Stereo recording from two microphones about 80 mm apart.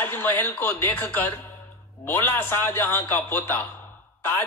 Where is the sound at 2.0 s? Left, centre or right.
Left.